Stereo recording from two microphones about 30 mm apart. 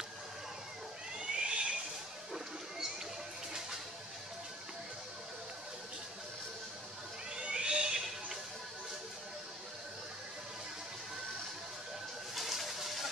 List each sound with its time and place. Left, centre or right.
1.3 s a sound: right
7.3 s cat: right
12.4 s water: centre